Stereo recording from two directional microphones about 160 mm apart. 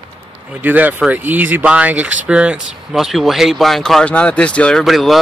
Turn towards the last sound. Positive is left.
turn(degrees=0)  # may be behind; listen again after turning